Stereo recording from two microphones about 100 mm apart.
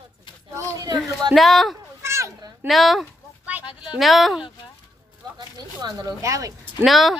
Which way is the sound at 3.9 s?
Centre (ahead or behind).